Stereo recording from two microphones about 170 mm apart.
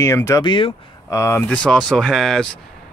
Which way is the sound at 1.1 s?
15° left (ahead or behind).